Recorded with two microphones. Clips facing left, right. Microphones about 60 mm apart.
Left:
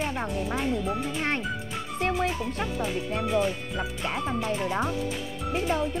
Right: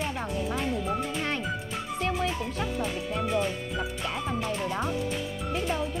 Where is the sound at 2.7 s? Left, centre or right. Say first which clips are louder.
Left 2 dB; centre.